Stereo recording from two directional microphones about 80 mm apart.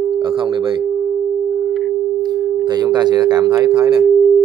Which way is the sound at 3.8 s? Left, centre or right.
Right.